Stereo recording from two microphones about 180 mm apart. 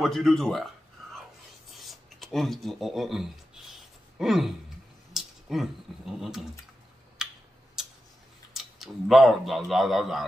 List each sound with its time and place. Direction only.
0.0 s a man's voice: centre (ahead or behind)
1.0 s whispering: centre (ahead or behind)
1.7 s a sound: centre (ahead or behind)
4.2 s a man's voice: centre (ahead or behind)
5.1 s a sound: centre (ahead or behind)
7.2 s tick-tock: 5° right (ahead or behind)
8.5 s a man's voice: centre (ahead or behind)